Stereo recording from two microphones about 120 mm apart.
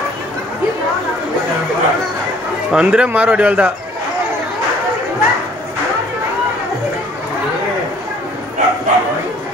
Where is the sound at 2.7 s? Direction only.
10° right (ahead or behind).